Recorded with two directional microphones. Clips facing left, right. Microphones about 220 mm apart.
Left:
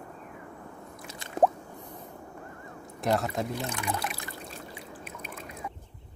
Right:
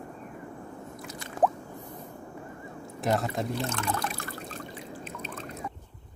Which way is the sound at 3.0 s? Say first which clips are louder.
Even; centre (ahead or behind).